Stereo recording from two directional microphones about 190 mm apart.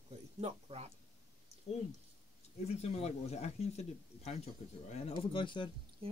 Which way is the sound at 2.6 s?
35° left (ahead or behind).